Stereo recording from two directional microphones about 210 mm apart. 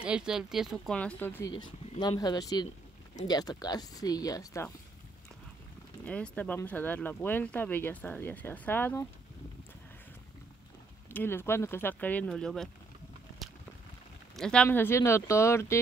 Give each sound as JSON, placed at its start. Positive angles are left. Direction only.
{"t": 0.0, "sound": "speech", "side_deg": -5}
{"t": 1.5, "sound": "speech", "side_deg": 20}
{"t": 6.0, "sound": "speech", "side_deg": 5}
{"t": 11.1, "sound": "speech", "side_deg": 10}
{"t": 14.3, "sound": "speech", "side_deg": 5}